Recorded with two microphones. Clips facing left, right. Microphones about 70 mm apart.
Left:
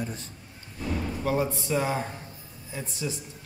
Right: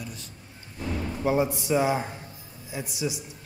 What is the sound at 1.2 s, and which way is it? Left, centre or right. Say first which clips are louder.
Speech: right 4 dB; centre.